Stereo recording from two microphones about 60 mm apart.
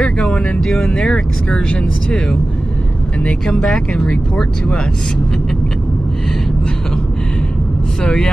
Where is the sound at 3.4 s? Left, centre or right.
Centre.